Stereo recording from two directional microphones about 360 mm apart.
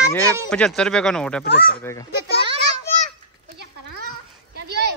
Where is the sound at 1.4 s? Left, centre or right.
Left.